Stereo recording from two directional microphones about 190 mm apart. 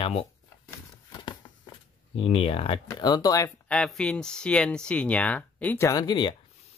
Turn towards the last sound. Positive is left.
turn(degrees=25)  # may be behind; listen again after turning